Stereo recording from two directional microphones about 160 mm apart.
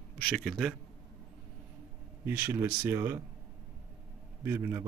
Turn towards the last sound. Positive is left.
turn(degrees=-15)  # may be behind; listen again after turning